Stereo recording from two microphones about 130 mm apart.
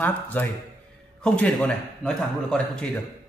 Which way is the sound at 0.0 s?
15° left (ahead or behind).